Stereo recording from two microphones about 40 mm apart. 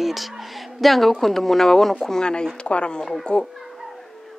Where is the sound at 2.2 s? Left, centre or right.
Left.